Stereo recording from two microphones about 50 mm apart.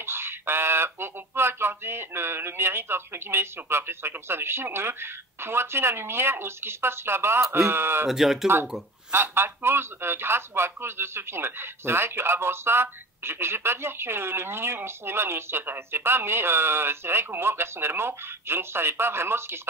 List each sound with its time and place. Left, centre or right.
0.0 s a man's voice: right
8.1 s speech: centre
9.1 s a man's voice: right